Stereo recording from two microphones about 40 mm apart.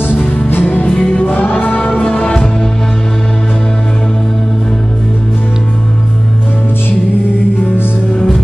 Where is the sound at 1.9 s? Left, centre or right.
Left.